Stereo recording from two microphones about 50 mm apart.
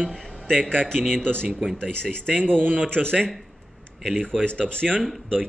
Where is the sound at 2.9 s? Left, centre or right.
Centre.